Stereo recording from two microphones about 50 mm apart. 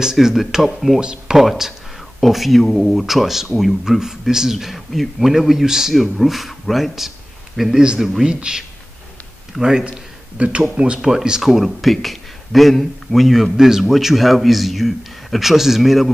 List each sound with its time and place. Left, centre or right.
0.0 s speech: centre
8.3 s speech: centre
11.5 s speech: centre